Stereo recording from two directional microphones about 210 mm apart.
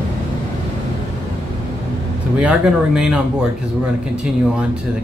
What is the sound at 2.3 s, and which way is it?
Speech, 5° right (ahead or behind).